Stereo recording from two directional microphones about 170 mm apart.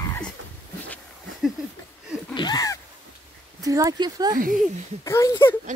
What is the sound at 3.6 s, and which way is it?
Speech, 20° right (ahead or behind).